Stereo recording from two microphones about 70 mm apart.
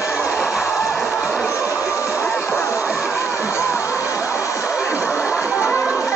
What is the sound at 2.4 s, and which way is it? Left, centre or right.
Music, left.